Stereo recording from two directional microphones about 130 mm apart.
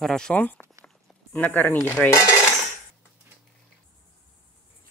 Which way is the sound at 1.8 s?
15° left (ahead or behind).